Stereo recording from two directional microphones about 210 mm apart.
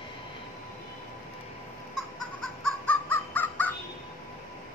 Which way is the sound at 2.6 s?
5° left (ahead or behind).